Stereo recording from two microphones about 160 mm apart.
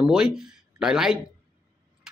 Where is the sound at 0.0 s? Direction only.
5° right (ahead or behind).